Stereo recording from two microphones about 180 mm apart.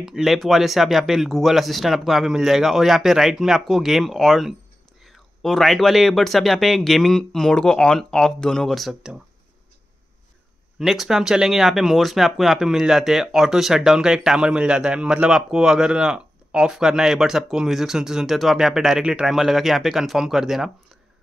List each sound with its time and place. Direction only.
0.0 s speech: centre (ahead or behind)
10.8 s speech: centre (ahead or behind)